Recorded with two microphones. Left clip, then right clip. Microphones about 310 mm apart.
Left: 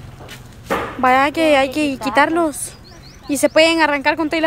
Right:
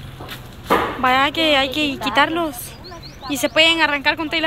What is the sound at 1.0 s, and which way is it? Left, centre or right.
A woman's voice, centre.